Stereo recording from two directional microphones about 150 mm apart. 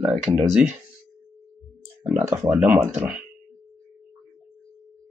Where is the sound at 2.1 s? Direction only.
20° right (ahead or behind).